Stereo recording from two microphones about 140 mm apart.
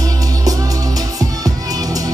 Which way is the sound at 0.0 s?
25° right (ahead or behind).